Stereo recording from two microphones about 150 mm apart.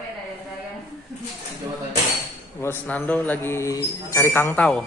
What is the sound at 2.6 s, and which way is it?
A man's voice, 15° left (ahead or behind).